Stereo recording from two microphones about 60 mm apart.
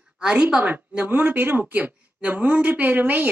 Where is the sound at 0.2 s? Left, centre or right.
Centre.